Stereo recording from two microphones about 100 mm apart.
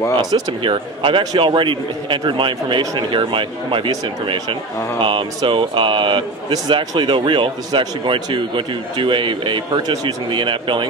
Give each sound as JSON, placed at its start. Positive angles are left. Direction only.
{"t": 0.2, "sound": "a man's voice", "side_deg": -45}
{"t": 2.8, "sound": "speech", "side_deg": -40}
{"t": 3.1, "sound": "a man's voice", "side_deg": -55}
{"t": 5.0, "sound": "a man's voice", "side_deg": -60}